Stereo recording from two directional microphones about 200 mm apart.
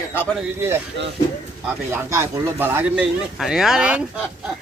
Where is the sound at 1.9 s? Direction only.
15° right (ahead or behind).